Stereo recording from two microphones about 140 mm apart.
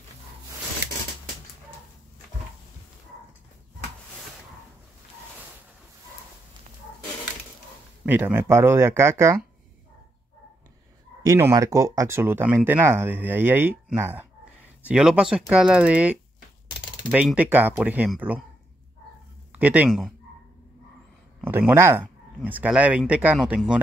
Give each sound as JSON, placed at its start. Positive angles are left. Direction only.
{"t": 8.0, "sound": "speech", "side_deg": -15}
{"t": 11.2, "sound": "speech", "side_deg": -20}
{"t": 17.4, "sound": "speech", "side_deg": -15}
{"t": 19.5, "sound": "speech", "side_deg": -10}
{"t": 21.4, "sound": "speech", "side_deg": -10}